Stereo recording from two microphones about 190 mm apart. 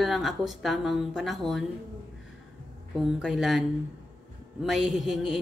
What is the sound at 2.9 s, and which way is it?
A woman's voice, centre (ahead or behind).